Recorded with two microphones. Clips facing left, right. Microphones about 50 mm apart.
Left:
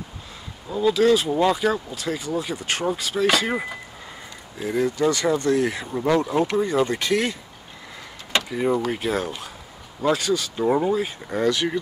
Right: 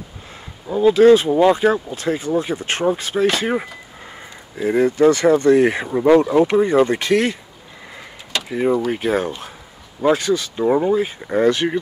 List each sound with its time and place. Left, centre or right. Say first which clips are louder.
0.7 s speech: right 7 dB; right
4.6 s speech: right 7 dB; right
5.9 s speech: right 8 dB; right
6.4 s speech: right 6 dB; right
8.5 s speech: right 6 dB; centre
10.5 s speech: right 4 dB; centre